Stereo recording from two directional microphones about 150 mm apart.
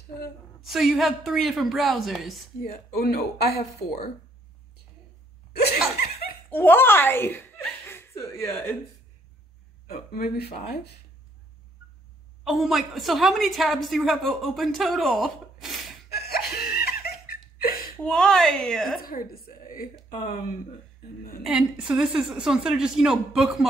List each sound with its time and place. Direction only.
0.6 s a woman's voice: centre (ahead or behind)
2.6 s speech: 90° left
5.5 s laughter: 90° left
6.5 s speech: 15° left (ahead or behind)
9.8 s speech: 90° left
12.4 s a woman's voice: centre (ahead or behind)
16.2 s laughter: 90° left
18.0 s a woman's voice: 5° left (ahead or behind)
18.9 s a woman's voice: 75° left (ahead or behind)
21.5 s a woman's voice: 5° right (ahead or behind)